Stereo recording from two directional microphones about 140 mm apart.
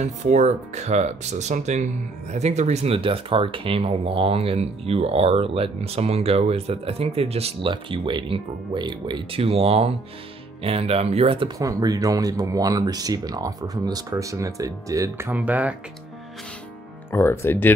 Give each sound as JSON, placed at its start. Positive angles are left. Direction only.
{"t": 0.0, "sound": "speech", "side_deg": -55}
{"t": 11.5, "sound": "speech", "side_deg": -25}
{"t": 17.1, "sound": "speech", "side_deg": 20}